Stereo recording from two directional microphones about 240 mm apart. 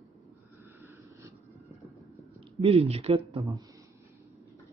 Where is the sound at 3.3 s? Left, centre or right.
Centre.